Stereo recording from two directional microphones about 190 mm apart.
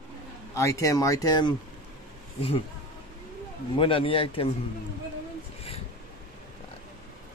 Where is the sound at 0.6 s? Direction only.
15° left (ahead or behind).